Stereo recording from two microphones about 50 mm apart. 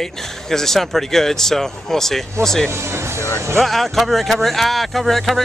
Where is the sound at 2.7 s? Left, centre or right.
Right.